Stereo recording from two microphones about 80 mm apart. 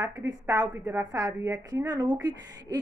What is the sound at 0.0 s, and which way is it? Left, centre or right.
A woman's voice, right.